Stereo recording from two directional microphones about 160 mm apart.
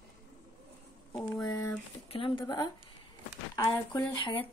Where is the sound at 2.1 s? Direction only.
35° left (ahead or behind).